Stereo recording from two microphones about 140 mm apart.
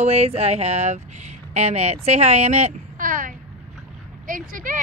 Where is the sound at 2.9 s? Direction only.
75° right (ahead or behind).